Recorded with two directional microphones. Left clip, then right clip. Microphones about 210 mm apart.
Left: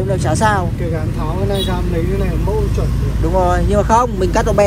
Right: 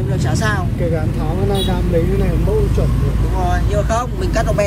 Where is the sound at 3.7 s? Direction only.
5° right (ahead or behind).